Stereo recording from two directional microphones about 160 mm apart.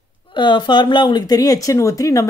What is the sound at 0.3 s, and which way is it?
Speech, 30° left (ahead or behind).